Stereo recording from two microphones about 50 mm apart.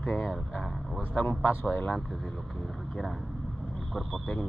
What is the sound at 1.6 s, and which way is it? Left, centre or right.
Speech, left.